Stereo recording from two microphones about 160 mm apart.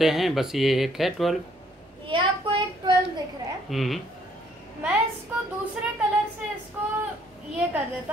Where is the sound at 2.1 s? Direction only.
30° right (ahead or behind).